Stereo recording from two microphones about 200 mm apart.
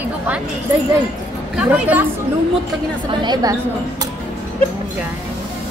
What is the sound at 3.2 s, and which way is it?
Speech, 20° right (ahead or behind).